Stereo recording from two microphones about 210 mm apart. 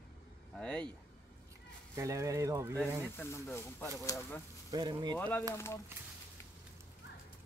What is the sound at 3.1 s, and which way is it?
Speech, 10° left (ahead or behind).